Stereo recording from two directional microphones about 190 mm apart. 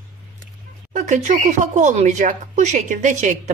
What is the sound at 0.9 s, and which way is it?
Speech, 40° right (ahead or behind).